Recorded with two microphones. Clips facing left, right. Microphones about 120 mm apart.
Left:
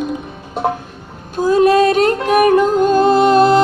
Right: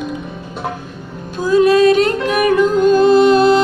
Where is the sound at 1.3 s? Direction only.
45° left (ahead or behind).